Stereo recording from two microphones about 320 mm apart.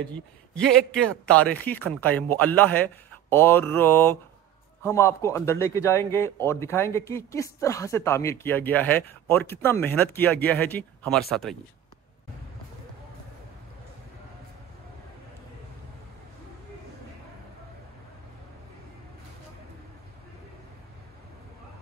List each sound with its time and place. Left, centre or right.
0.9 s speech: centre